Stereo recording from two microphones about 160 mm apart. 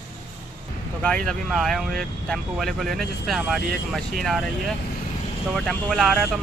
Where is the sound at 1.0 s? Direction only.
5° left (ahead or behind).